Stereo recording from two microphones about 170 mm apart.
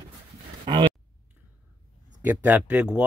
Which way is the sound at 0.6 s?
30° right (ahead or behind).